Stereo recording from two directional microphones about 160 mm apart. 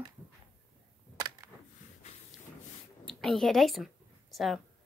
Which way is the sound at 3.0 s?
Centre (ahead or behind).